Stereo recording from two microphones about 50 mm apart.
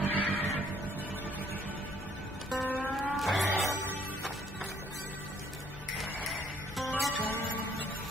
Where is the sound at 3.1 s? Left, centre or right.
Centre.